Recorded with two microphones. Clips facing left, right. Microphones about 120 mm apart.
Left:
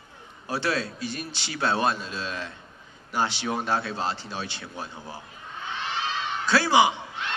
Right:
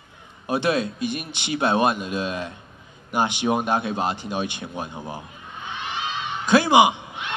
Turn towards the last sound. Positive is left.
turn(degrees=-15)  # may be behind; listen again after turning